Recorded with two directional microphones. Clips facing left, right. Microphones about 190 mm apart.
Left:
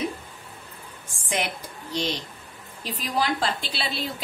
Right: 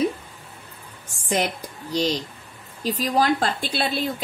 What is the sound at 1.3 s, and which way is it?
A woman's voice, 40° right (ahead or behind).